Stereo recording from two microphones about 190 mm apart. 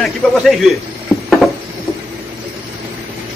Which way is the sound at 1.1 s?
15° left (ahead or behind).